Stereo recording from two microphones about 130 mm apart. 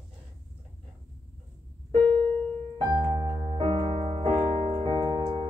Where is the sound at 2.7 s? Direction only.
35° right (ahead or behind).